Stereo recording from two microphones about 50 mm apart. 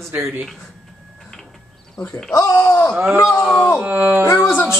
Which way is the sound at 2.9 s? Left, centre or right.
Right.